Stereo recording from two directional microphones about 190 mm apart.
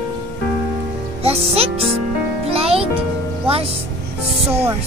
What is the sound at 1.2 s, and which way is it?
Music, 30° right (ahead or behind).